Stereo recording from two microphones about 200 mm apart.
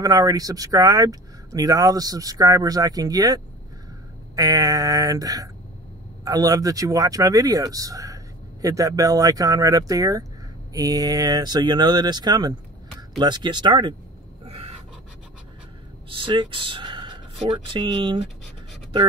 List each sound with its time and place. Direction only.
0.0 s speech: 15° right (ahead or behind)
14.4 s a sound: 30° right (ahead or behind)
16.1 s speech: 25° right (ahead or behind)